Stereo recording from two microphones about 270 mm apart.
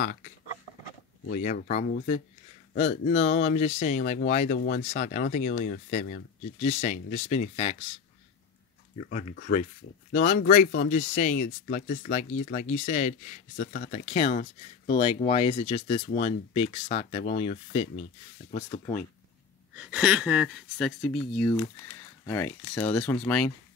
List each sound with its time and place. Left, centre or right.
0.0 s speech: left
1.3 s speech: left
9.5 s speech: left
19.7 s speech: centre